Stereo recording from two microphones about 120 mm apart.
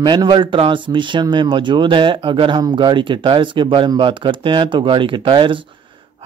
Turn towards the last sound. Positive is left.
turn(degrees=-45)  # may be behind; listen again after turning